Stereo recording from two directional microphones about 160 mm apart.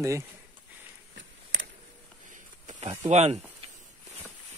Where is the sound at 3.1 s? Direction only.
40° right (ahead or behind).